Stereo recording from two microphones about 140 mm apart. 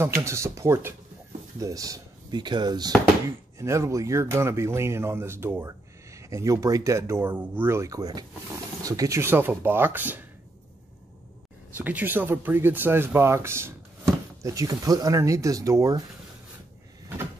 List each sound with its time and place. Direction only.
0.0 s speech: 20° right (ahead or behind)
11.7 s speech: 10° right (ahead or behind)